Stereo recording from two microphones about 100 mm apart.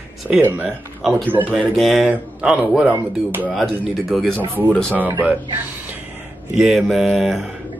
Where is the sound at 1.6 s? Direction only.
Centre (ahead or behind); by 3.4 s 20° right (ahead or behind).